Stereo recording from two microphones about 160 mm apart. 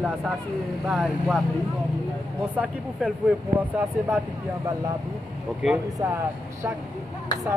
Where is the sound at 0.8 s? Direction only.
5° right (ahead or behind).